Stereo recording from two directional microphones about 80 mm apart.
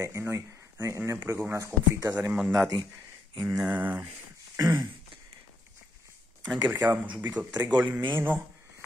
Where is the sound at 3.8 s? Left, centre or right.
Right.